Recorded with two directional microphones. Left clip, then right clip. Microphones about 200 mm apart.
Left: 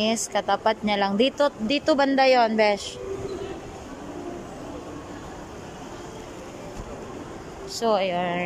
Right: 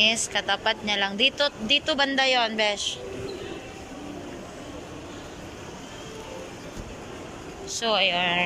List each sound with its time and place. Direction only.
0.0 s speech: 30° left (ahead or behind)
7.8 s speech: 25° left (ahead or behind)